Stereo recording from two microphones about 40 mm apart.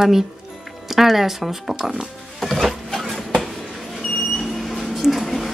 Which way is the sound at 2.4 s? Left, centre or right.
Centre.